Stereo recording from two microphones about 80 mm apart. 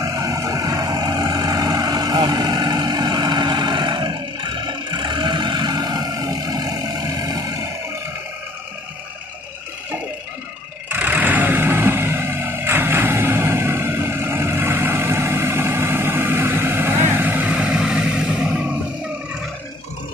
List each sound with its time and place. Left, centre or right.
0.0 s vehicle: right
10.9 s vehicle: right